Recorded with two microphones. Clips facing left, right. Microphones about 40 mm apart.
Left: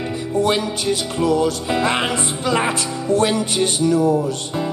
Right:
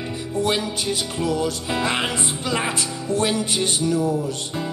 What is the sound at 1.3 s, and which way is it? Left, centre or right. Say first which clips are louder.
Music: left 6 dB; centre.